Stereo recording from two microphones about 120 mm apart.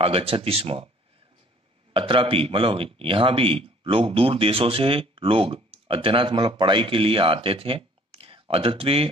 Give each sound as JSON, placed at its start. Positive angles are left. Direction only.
{"t": 0.0, "sound": "speech", "side_deg": -55}
{"t": 2.0, "sound": "speech", "side_deg": -45}